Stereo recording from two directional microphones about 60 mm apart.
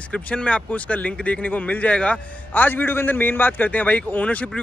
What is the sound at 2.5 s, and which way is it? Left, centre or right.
A man's voice, left.